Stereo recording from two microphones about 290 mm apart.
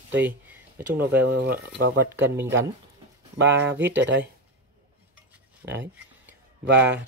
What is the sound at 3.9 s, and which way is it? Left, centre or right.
Speech, right.